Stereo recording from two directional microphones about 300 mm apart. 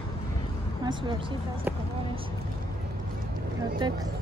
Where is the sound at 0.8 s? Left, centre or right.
Centre.